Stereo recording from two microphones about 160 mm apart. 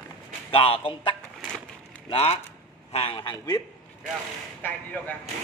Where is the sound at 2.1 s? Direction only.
40° left (ahead or behind).